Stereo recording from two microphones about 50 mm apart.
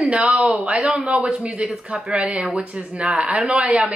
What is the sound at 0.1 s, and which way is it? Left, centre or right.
Speech, right.